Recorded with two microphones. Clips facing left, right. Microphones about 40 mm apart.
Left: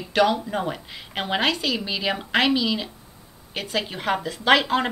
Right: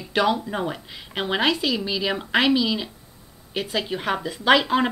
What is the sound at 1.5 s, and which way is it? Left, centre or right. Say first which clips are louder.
Speech: right 2 dB; centre.